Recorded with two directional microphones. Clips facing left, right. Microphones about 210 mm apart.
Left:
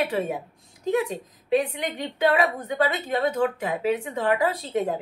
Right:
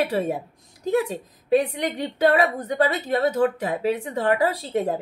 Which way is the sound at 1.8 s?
40° right (ahead or behind).